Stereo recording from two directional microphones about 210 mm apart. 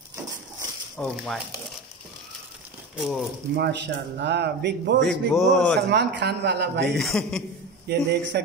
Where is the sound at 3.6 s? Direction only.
55° right (ahead or behind).